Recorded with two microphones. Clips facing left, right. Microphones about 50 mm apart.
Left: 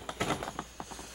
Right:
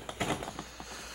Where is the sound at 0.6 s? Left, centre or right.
Right.